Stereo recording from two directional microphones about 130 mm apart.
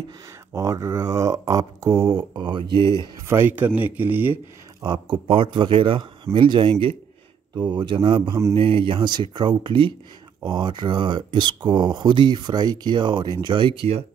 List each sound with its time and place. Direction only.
0.5 s speech: 25° right (ahead or behind)
3.3 s speech: 20° right (ahead or behind)
4.8 s speech: 30° right (ahead or behind)